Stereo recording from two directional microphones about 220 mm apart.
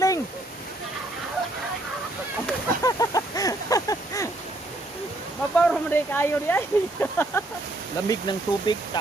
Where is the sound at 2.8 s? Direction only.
15° left (ahead or behind).